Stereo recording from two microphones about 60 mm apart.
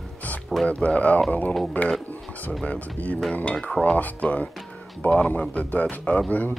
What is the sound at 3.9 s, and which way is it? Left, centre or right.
Speech, left.